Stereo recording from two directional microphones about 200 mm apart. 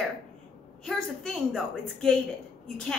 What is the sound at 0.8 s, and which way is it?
Speech, 5° left (ahead or behind).